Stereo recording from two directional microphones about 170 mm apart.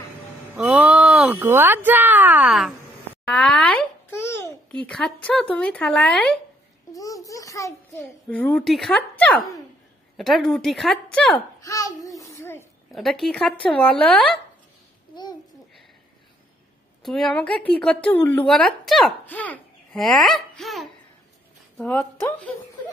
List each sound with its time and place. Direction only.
0.6 s speech: 5° right (ahead or behind)
3.3 s babbling: 5° left (ahead or behind)
6.9 s a sound: 20° left (ahead or behind)
8.3 s speech: 5° left (ahead or behind)
11.6 s babbling: 20° left (ahead or behind)
12.9 s speech: centre (ahead or behind)
17.0 s a child's voice: centre (ahead or behind)